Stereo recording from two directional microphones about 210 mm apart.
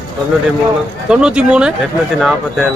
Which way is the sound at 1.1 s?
5° right (ahead or behind).